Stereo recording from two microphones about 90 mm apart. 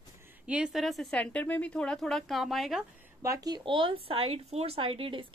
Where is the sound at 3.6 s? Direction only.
70° right (ahead or behind); by 5.2 s 85° right.